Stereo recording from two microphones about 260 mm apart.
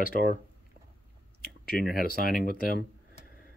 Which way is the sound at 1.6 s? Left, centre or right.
Left.